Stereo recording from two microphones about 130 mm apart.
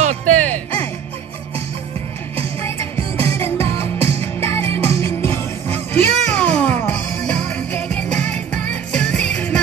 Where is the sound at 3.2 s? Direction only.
20° left (ahead or behind).